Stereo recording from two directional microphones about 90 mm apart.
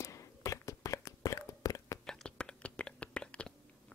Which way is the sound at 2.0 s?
5° left (ahead or behind).